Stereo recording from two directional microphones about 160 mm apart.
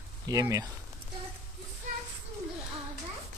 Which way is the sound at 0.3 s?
20° right (ahead or behind).